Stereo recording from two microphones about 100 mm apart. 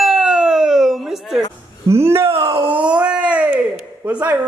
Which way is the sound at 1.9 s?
25° right (ahead or behind).